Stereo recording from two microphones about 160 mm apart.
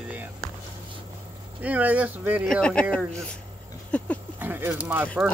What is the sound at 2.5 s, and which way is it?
Speech, 5° left (ahead or behind).